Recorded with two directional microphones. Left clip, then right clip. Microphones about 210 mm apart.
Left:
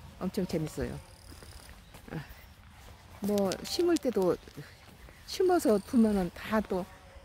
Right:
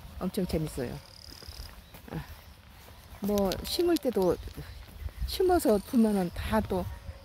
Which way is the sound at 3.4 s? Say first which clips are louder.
Right 1 dB; 10° right (ahead or behind).